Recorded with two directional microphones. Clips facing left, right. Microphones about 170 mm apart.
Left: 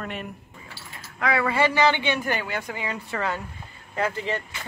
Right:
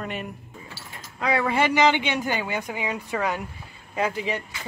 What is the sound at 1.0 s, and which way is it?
Speech, 20° right (ahead or behind).